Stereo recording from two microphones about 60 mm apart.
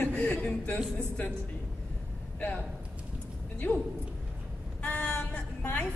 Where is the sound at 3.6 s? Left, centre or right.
Left.